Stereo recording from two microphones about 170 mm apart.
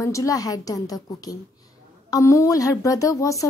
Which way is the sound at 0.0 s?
20° left (ahead or behind).